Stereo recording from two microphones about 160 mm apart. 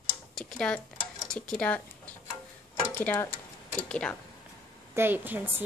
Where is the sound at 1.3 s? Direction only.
5° left (ahead or behind).